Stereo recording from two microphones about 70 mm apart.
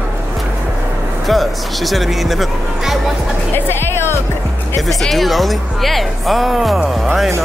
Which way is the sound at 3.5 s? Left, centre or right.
Left.